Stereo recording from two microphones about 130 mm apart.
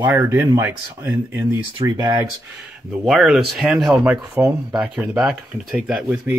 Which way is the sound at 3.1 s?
Centre (ahead or behind).